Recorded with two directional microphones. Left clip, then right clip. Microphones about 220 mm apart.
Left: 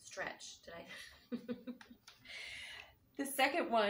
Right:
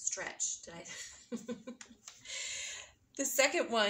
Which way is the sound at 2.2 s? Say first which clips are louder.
Right 6 dB; 55° right (ahead or behind).